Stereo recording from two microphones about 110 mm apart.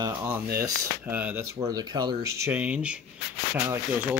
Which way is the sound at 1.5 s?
35° right (ahead or behind).